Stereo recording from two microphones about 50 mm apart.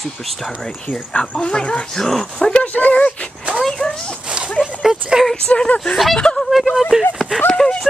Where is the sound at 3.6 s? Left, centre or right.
Centre.